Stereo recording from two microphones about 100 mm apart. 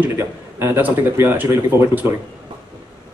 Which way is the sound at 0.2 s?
20° right (ahead or behind).